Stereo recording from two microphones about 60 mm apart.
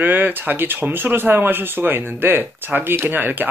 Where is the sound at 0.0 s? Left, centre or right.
Right.